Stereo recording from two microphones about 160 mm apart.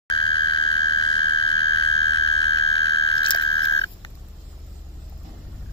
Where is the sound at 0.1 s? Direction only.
30° left (ahead or behind).